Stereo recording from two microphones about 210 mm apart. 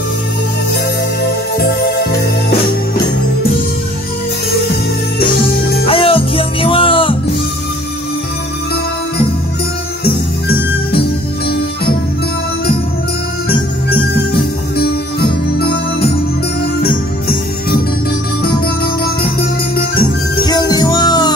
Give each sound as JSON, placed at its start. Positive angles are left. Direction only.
{"t": 1.2, "sound": "music", "side_deg": 45}
{"t": 5.3, "sound": "music", "side_deg": 45}
{"t": 5.9, "sound": "music", "side_deg": 25}
{"t": 13.5, "sound": "music", "side_deg": 50}
{"t": 19.8, "sound": "music", "side_deg": 45}
{"t": 20.4, "sound": "music", "side_deg": 20}